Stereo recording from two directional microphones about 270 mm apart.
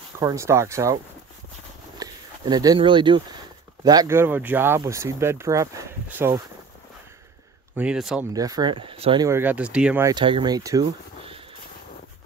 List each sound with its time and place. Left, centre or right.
0.2 s speech: centre
2.0 s a sound: centre
3.8 s speech: centre
7.7 s speech: centre
8.3 s speech: centre